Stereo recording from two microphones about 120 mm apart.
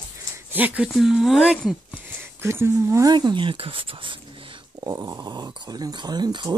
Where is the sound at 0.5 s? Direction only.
15° right (ahead or behind).